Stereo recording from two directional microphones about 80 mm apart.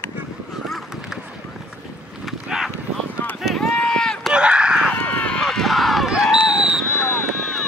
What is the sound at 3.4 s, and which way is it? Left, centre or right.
Run, centre.